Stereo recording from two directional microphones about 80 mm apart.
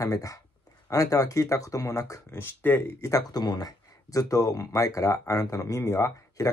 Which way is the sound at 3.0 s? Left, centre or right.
Left.